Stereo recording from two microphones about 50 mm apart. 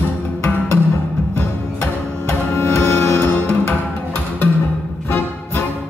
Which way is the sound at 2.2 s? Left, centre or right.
Left.